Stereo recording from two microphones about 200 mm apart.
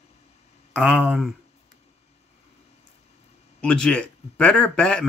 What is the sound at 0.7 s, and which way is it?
Speech, centre (ahead or behind).